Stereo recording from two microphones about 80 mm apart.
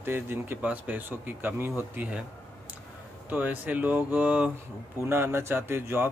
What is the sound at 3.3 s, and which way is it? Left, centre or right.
Speech, right.